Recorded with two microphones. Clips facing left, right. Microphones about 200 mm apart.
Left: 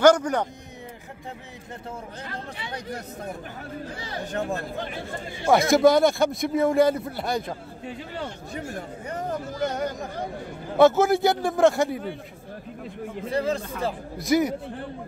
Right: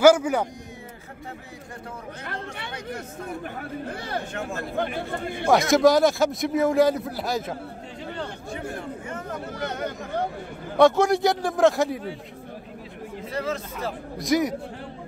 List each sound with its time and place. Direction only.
0.0 s a man's voice: 5° right (ahead or behind)
3.9 s speech: 55° right (ahead or behind)
4.3 s speech: 35° left (ahead or behind)
4.7 s speech: 60° right (ahead or behind)
5.5 s a man's voice: centre (ahead or behind)
9.4 s speech: 60° right (ahead or behind)
10.8 s a man's voice: 5° left (ahead or behind)
13.3 s speech: 30° left (ahead or behind)
14.1 s a man's voice: centre (ahead or behind)